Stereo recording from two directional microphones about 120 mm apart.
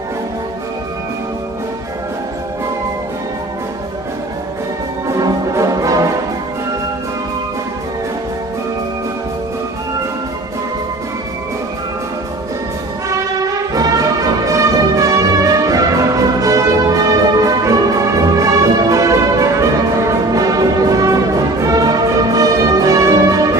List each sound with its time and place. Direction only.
5.0 s music: 25° right (ahead or behind)
13.4 s music: 30° right (ahead or behind)